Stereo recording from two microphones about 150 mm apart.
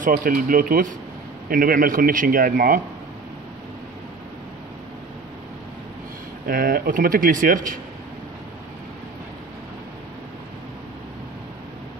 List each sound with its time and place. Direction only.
0.0 s a man's voice: 70° right (ahead or behind)
6.4 s speech: 75° right (ahead or behind)